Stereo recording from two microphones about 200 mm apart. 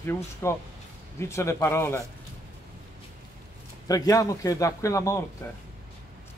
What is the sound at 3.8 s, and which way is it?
Speech, 15° left (ahead or behind).